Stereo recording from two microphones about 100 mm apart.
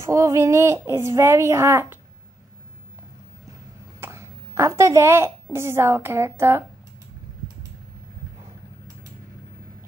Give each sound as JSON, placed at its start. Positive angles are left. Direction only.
{"t": 0.0, "sound": "speech", "side_deg": -30}
{"t": 4.0, "sound": "a child's voice", "side_deg": -30}